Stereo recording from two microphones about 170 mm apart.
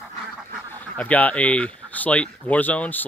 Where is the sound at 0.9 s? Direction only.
10° left (ahead or behind).